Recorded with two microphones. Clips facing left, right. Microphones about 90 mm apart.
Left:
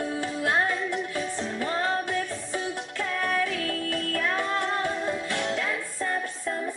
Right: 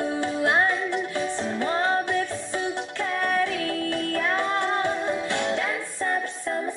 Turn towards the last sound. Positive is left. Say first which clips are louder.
# right 3 dB
turn(degrees=-25)  # may be behind; listen again after turning